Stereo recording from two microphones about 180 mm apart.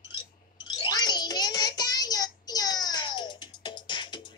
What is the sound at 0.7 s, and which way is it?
Child singing, 20° left (ahead or behind).